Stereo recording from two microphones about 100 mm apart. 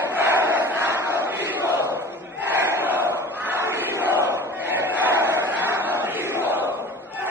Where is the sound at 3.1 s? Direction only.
25° right (ahead or behind).